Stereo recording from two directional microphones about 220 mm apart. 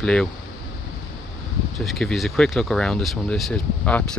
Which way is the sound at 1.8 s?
Centre (ahead or behind).